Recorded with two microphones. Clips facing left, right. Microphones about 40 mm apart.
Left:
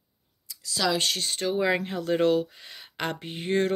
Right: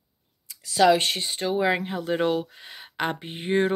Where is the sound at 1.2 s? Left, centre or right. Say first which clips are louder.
Right 2 dB; centre.